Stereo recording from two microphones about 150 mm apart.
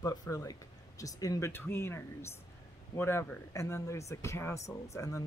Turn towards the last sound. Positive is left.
turn(degrees=20)  # may be behind; listen again after turning